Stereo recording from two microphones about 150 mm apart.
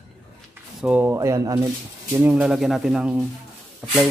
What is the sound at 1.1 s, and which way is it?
Speech, 20° right (ahead or behind).